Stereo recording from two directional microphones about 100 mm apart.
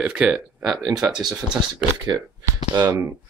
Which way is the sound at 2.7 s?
45° right (ahead or behind).